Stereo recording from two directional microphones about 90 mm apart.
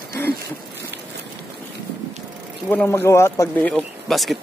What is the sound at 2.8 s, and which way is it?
Speech, 30° left (ahead or behind).